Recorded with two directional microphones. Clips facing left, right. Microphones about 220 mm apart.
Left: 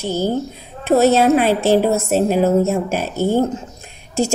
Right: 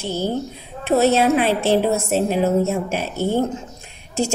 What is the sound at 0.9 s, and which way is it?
A woman's voice, 45° left (ahead or behind).